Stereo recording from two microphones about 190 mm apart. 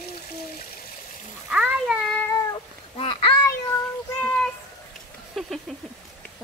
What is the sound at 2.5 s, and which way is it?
Cat, 25° left (ahead or behind).